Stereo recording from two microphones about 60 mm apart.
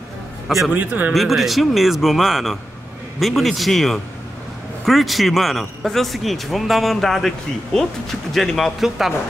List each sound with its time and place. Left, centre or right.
0.7 s speech: right
1.1 s speech: centre